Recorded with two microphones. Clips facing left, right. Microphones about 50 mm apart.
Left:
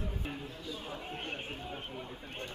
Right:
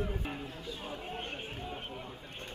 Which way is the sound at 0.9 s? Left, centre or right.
Left.